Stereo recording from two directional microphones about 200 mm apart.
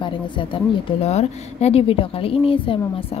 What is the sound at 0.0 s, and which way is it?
A woman's voice, 25° left (ahead or behind).